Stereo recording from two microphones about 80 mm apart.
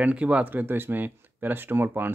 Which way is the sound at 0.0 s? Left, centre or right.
Centre.